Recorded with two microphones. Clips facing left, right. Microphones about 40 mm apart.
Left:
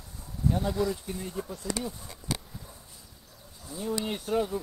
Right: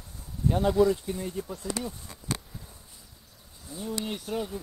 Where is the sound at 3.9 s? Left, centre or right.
Centre.